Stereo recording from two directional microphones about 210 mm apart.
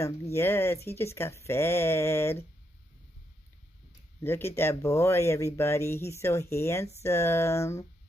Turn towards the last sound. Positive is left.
turn(degrees=15)  # may be behind; listen again after turning